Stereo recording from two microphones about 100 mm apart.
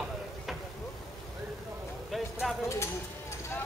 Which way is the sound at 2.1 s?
Centre (ahead or behind).